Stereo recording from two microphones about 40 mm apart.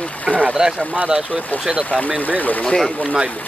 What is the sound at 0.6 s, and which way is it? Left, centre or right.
Speech, centre.